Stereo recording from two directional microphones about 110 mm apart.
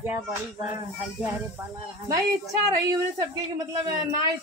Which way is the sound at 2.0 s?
30° right (ahead or behind).